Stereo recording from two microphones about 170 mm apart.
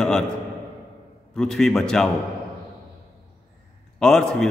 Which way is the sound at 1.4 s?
5° left (ahead or behind).